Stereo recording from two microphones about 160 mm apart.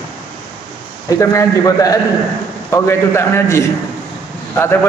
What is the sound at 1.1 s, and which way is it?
Speech, 20° left (ahead or behind).